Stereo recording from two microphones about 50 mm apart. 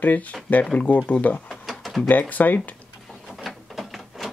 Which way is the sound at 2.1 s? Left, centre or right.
Left.